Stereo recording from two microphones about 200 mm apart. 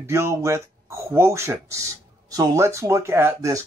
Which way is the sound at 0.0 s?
15° right (ahead or behind).